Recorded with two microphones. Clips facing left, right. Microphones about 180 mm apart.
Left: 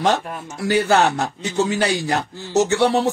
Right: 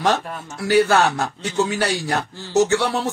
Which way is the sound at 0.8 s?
20° left (ahead or behind).